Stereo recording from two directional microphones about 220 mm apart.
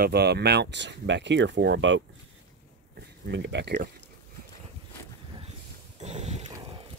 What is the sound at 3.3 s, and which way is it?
Speech, 55° right (ahead or behind).